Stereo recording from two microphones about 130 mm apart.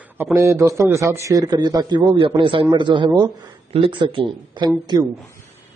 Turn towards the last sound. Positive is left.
turn(degrees=-35)  # may be behind; listen again after turning